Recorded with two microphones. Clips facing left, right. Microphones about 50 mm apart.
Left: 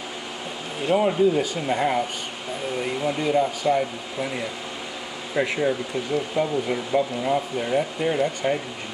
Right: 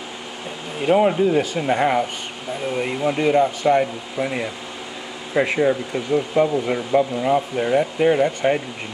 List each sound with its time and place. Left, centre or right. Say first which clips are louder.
0.8 s speech: right 3 dB; right
7.5 s speech: right 5 dB; right